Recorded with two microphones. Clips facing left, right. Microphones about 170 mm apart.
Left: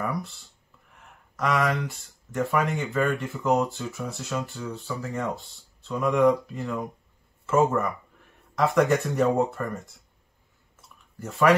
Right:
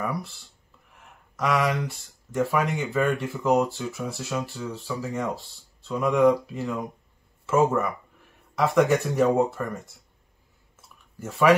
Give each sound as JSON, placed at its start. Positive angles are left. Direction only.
{"t": 1.3, "sound": "a sound", "side_deg": -5}
{"t": 2.3, "sound": "speech", "side_deg": 0}
{"t": 11.1, "sound": "speech", "side_deg": 0}